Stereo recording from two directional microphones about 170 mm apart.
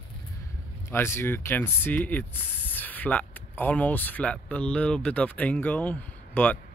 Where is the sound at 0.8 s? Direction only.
15° left (ahead or behind).